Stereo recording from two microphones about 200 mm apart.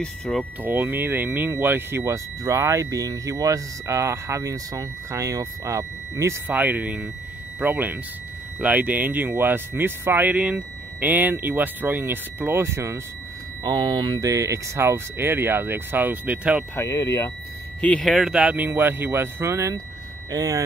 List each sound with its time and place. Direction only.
0.0 s speech: 5° left (ahead or behind)
0.6 s speech: 10° right (ahead or behind)
16.7 s speech: 15° left (ahead or behind); by 20.6 s 20° right (ahead or behind)